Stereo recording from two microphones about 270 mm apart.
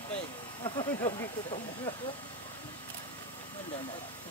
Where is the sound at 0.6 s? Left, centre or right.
Centre.